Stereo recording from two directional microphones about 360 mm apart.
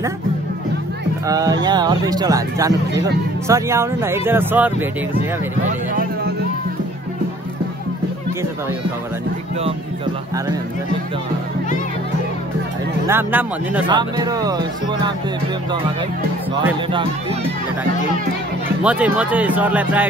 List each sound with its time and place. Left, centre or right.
1.2 s speech: centre
5.7 s speech: right
13.0 s speech: centre
16.6 s speech: centre
18.9 s speech: centre